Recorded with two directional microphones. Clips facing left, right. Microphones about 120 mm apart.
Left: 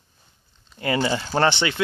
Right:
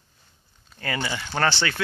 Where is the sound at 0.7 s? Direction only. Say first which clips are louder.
Left 7 dB; 25° left (ahead or behind).